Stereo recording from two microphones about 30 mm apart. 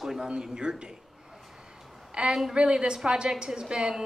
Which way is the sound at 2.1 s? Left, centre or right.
Right.